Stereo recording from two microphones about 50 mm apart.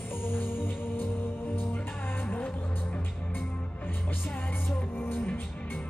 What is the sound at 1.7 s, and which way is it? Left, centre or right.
Music, left.